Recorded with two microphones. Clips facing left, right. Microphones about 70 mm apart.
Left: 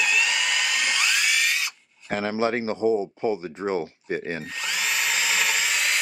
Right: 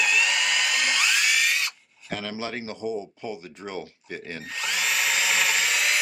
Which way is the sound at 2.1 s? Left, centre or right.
Left.